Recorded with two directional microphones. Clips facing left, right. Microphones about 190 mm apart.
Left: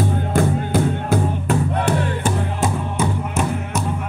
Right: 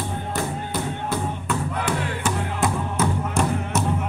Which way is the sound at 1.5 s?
35° left (ahead or behind).